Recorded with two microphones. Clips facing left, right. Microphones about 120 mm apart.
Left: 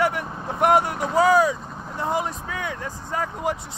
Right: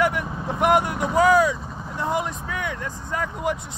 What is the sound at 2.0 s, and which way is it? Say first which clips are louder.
Speech: even; 35° left (ahead or behind).